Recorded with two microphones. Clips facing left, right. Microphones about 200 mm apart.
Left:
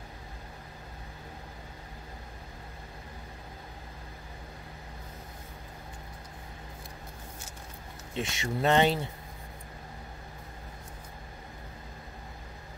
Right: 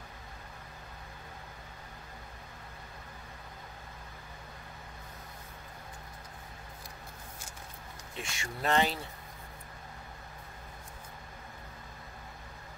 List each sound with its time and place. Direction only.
8.2 s speech: 20° left (ahead or behind)